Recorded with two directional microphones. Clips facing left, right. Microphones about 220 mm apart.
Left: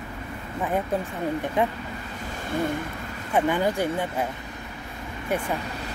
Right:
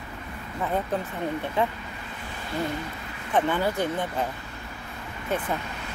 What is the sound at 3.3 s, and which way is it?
Speech, 15° left (ahead or behind).